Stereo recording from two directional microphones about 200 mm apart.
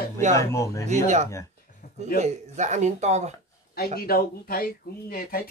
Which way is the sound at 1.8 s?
50° left (ahead or behind).